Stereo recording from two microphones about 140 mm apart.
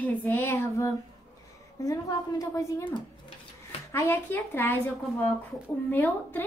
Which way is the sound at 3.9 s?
20° left (ahead or behind).